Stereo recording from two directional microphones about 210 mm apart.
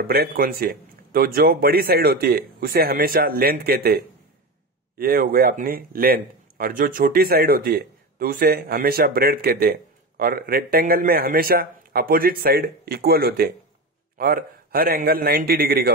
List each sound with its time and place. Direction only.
0.0 s a man's voice: 45° right (ahead or behind)